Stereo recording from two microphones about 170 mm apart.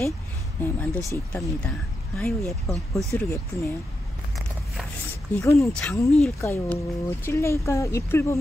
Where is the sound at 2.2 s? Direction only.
Centre (ahead or behind).